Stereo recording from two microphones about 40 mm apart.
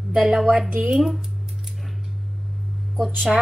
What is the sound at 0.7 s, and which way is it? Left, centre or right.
Speech, right.